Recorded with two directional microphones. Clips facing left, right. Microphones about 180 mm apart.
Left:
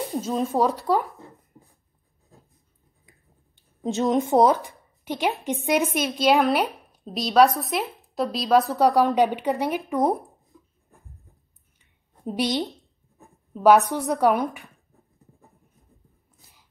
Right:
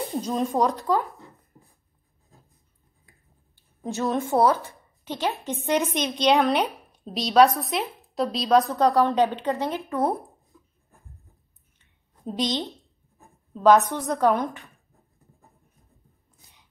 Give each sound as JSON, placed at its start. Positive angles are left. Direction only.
{"t": 0.2, "sound": "a woman's voice", "side_deg": 0}
{"t": 3.1, "sound": "a sound", "side_deg": 20}
{"t": 5.7, "sound": "a woman's voice", "side_deg": 10}
{"t": 8.7, "sound": "a woman's voice", "side_deg": 15}
{"t": 12.3, "sound": "a woman's voice", "side_deg": 10}